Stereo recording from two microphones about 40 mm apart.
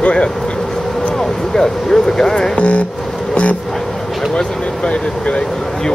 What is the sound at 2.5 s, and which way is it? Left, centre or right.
Speech, left.